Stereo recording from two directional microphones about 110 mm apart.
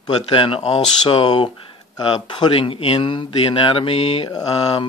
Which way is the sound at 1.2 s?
45° left (ahead or behind).